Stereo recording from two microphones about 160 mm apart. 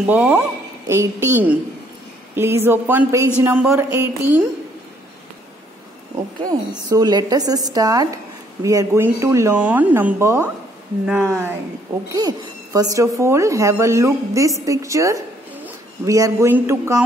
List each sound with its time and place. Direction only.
0.0 s speech: 10° right (ahead or behind)
6.4 s a woman's voice: 25° right (ahead or behind)